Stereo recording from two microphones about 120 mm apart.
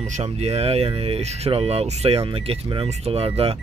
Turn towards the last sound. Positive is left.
turn(degrees=-55)  # may be behind; listen again after turning